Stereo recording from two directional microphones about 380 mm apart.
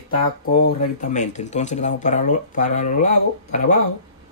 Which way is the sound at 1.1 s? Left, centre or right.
Centre.